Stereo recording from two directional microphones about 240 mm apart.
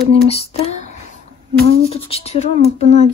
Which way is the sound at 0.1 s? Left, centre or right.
Left.